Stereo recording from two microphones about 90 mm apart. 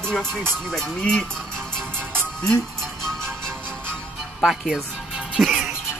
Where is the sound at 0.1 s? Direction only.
5° left (ahead or behind).